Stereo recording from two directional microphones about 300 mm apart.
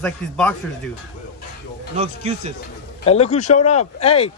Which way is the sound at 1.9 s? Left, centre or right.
Right.